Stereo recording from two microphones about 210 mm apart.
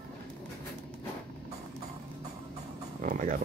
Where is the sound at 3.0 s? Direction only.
40° right (ahead or behind).